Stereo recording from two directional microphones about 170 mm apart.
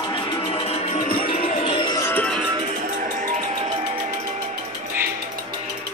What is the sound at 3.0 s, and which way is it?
Music, 50° right (ahead or behind).